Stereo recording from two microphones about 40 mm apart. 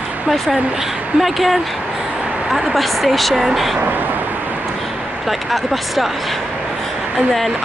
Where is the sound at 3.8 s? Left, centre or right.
Right.